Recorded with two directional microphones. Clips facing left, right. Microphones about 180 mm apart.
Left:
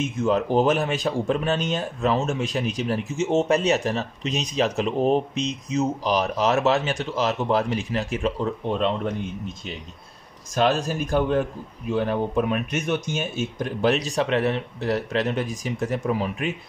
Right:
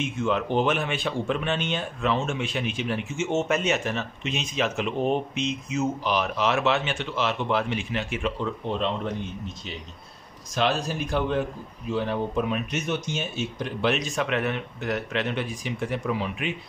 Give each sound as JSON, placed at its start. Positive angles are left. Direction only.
{"t": 0.0, "sound": "speech", "side_deg": 40}
{"t": 10.5, "sound": "speech", "side_deg": 45}